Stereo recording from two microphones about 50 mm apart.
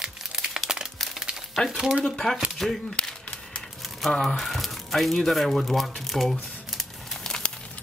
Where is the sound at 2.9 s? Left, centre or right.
Left.